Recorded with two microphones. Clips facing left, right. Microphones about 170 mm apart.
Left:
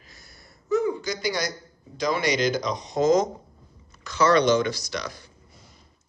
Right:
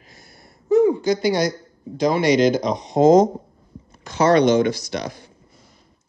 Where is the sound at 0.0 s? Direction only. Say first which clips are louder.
Right 4 dB; 55° right (ahead or behind).